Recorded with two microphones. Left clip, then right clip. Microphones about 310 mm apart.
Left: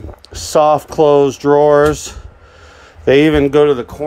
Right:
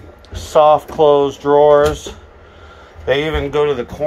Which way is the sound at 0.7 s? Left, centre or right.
Left.